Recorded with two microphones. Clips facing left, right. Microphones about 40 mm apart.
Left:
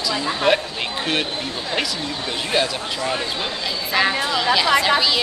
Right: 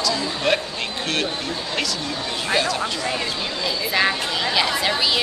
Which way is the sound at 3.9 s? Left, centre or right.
Centre.